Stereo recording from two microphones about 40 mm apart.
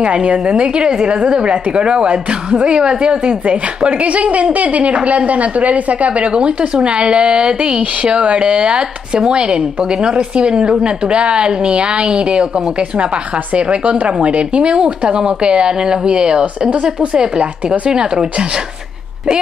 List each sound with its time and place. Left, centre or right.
0.0 s a woman's voice: right